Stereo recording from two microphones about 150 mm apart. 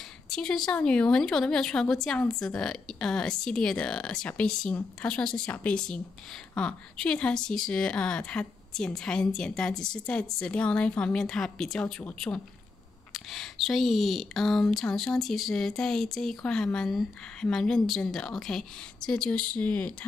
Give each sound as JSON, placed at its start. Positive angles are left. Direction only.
{"t": 0.3, "sound": "a woman's voice", "side_deg": 5}